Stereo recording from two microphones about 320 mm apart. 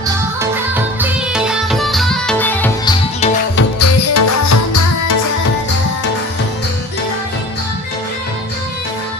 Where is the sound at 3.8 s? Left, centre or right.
Left.